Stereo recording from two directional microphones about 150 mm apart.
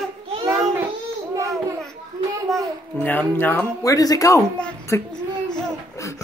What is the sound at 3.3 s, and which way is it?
Speech, 10° left (ahead or behind).